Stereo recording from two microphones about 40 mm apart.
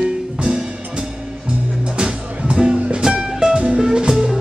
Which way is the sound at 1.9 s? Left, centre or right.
Right.